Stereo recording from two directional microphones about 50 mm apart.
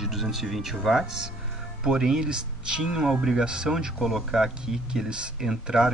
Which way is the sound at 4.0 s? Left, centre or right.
Centre.